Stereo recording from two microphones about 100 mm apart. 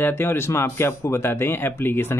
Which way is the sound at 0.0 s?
20° left (ahead or behind).